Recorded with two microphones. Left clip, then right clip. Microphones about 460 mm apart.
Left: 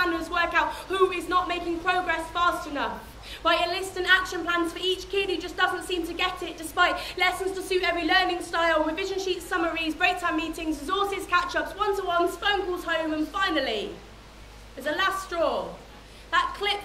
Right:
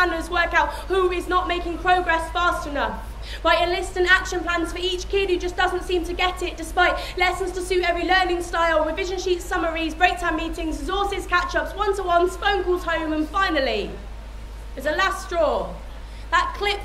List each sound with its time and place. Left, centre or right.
0.0 s a woman's voice: right
14.9 s a woman's voice: right
16.3 s a woman's voice: right